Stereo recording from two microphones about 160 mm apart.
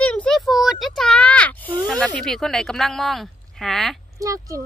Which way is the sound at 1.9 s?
5° left (ahead or behind).